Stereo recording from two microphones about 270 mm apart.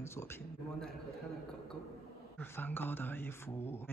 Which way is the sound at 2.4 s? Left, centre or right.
Centre.